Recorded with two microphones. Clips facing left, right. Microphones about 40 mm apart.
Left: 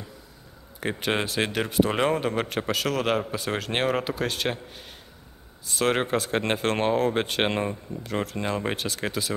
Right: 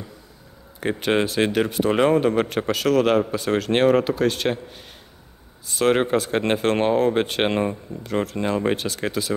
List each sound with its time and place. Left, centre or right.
0.7 s speech: centre